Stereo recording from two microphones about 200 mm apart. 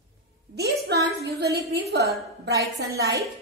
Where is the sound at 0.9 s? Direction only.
55° right (ahead or behind).